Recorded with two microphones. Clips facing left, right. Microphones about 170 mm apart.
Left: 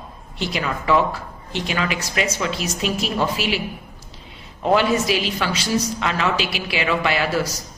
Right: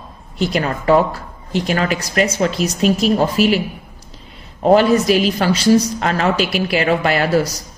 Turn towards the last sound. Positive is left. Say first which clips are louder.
# right 5 dB
turn(degrees=-45)  # may be behind; listen again after turning